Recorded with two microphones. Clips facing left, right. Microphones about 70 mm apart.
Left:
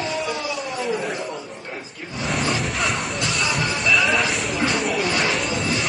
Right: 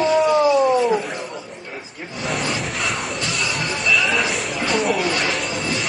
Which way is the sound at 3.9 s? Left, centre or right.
Centre.